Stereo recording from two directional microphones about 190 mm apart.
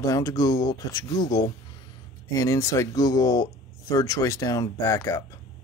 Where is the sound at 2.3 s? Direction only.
15° left (ahead or behind).